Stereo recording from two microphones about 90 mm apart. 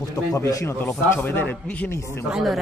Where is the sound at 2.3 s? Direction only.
Centre (ahead or behind).